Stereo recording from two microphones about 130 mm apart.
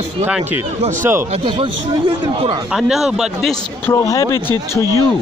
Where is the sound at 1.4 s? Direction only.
40° right (ahead or behind).